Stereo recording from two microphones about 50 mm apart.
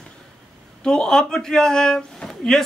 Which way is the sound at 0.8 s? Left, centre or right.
Centre.